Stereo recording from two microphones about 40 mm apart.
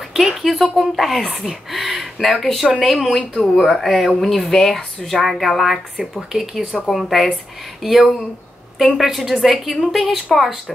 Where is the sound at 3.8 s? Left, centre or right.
Centre.